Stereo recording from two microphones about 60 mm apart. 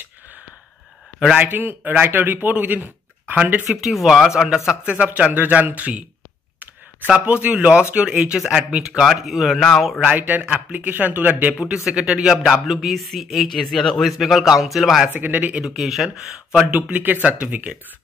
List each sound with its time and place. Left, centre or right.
1.4 s speech: right
2.5 s a sound: right
3.6 s speech: centre
4.8 s speech: centre
7.4 s speech: centre
8.4 s speech: centre
10.1 s speech: right
11.6 s speech: centre
15.1 s speech: right
15.6 s speech: centre
16.9 s speech: right